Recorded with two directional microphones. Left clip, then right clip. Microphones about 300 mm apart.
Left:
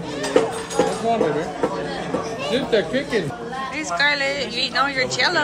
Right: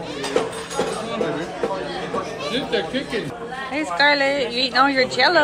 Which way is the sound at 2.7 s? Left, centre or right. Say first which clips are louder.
Left 3 dB; left.